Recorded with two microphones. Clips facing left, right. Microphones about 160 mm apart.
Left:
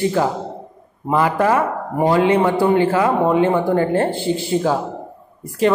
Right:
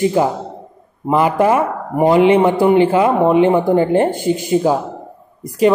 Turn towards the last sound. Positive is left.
turn(degrees=-15)  # may be behind; listen again after turning